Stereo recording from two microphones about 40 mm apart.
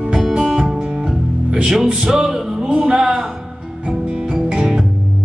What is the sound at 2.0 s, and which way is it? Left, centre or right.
Music, centre.